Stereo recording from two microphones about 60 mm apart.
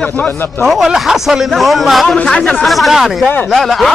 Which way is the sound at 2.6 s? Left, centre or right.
Centre.